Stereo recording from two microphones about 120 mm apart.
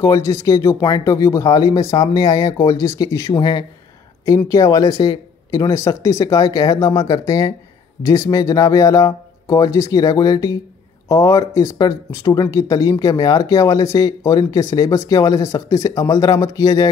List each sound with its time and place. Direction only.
0.0 s speech: 25° left (ahead or behind)